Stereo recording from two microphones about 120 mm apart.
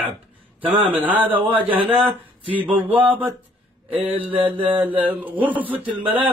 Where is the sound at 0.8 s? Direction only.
15° right (ahead or behind).